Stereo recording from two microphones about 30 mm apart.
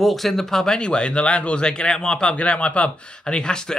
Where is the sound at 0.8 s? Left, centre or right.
Left.